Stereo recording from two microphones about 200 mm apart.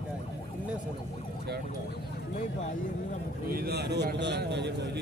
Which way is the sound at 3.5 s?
50° right (ahead or behind).